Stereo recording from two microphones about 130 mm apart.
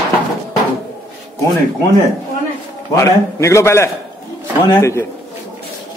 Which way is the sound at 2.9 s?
20° left (ahead or behind).